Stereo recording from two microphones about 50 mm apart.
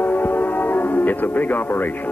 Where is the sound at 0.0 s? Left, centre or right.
Left.